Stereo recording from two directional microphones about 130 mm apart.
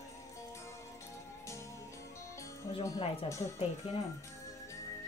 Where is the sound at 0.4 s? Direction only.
20° left (ahead or behind).